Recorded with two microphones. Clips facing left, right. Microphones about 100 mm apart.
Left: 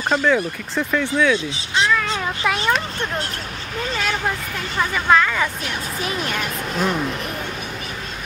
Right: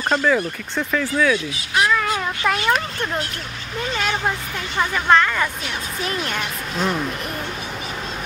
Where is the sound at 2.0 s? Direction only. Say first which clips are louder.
Right 1 dB; 10° right (ahead or behind).